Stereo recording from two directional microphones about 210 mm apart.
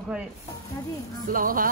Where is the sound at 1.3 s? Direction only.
40° right (ahead or behind).